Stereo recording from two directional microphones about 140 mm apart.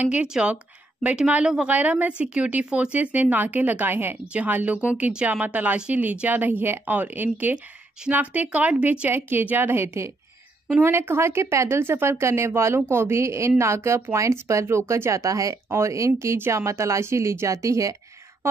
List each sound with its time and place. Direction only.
0.0 s speech: 10° right (ahead or behind)